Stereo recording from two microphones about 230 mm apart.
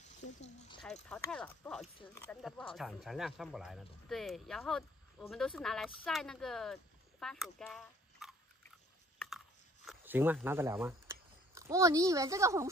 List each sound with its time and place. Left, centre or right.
0.2 s a sound: left
1.0 s speech: centre
2.7 s speech: centre
9.8 s speech: centre